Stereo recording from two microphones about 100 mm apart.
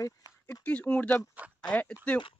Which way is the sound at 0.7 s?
10° left (ahead or behind).